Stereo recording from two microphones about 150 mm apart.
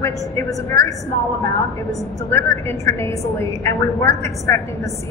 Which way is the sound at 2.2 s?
20° left (ahead or behind).